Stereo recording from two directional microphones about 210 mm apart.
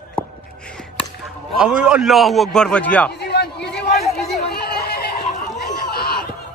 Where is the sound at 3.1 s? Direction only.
50° left (ahead or behind).